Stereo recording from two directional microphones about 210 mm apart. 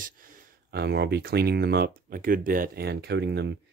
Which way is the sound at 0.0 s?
45° right (ahead or behind).